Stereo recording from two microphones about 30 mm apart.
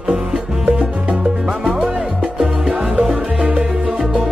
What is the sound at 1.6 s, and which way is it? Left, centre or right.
Music, centre.